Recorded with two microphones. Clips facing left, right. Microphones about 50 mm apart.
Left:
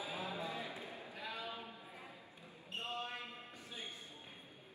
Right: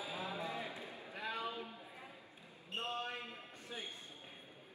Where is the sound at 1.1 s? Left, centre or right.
Right.